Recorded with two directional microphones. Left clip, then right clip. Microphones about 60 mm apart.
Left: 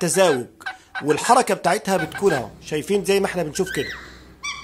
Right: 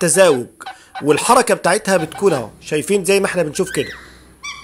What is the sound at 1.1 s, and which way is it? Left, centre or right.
A man's voice, right.